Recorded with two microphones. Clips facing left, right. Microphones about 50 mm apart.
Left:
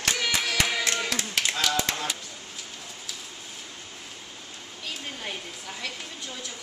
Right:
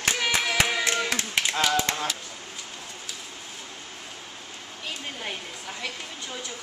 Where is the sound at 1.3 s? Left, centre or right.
Centre.